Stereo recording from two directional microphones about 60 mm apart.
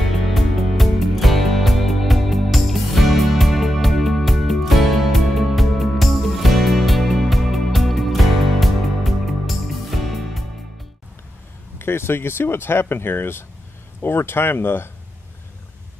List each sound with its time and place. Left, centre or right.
0.3 s music: centre
11.8 s speech: left